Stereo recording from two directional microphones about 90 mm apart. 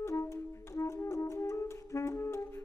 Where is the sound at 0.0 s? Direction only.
30° left (ahead or behind).